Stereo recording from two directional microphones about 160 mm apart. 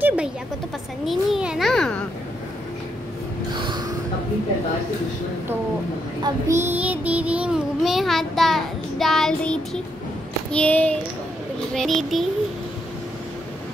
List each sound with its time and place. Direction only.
0.0 s a sound: 10° right (ahead or behind)
3.5 s gasp: 30° right (ahead or behind)
6.2 s child singing: 20° right (ahead or behind); by 9.6 s 5° left (ahead or behind)
10.5 s a child's voice: 10° left (ahead or behind)